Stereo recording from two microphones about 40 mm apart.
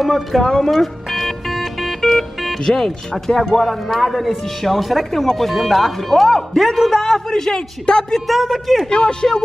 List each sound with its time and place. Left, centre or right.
0.0 s speech: centre
0.4 s a man's voice: centre
0.7 s music: centre
2.6 s a man's voice: centre
8.3 s speech: centre
8.9 s a man's voice: centre